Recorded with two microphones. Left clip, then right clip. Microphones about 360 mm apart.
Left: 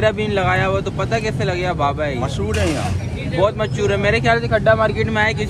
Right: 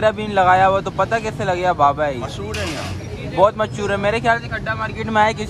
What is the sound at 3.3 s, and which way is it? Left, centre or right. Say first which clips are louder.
Speech: right 2 dB; centre.